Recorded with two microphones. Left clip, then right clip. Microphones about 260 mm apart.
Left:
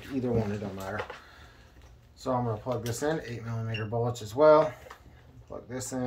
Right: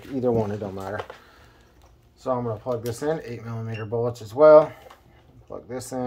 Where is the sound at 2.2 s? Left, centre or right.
Centre.